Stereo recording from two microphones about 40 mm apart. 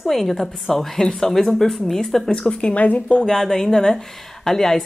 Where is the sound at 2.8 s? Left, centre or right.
Left.